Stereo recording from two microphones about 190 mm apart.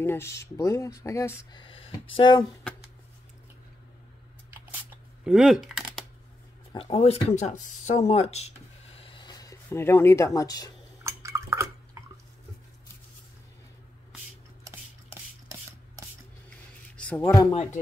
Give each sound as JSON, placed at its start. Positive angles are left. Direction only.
{"t": 0.0, "sound": "speech", "side_deg": 15}
{"t": 5.2, "sound": "speech", "side_deg": -5}
{"t": 6.7, "sound": "speech", "side_deg": 30}
{"t": 11.1, "sound": "drip", "side_deg": -15}
{"t": 14.6, "sound": "a sound", "side_deg": -15}
{"t": 16.9, "sound": "a sound", "side_deg": 5}
{"t": 17.2, "sound": "speech", "side_deg": 20}